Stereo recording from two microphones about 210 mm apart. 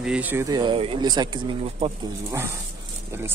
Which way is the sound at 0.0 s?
5° right (ahead or behind).